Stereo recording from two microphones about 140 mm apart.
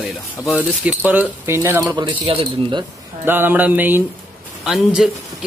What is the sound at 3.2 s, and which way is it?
Speech, 15° right (ahead or behind).